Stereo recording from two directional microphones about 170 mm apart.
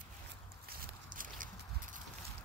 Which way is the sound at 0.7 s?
55° right (ahead or behind).